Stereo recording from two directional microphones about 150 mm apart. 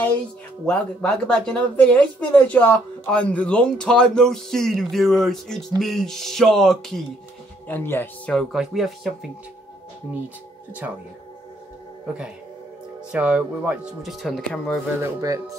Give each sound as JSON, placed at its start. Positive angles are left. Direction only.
{"t": 0.7, "sound": "speech", "side_deg": 5}
{"t": 7.6, "sound": "speech", "side_deg": 15}
{"t": 8.4, "sound": "speech", "side_deg": 0}
{"t": 10.8, "sound": "speech", "side_deg": -10}
{"t": 13.1, "sound": "speech", "side_deg": -5}
{"t": 15.0, "sound": "speech", "side_deg": -20}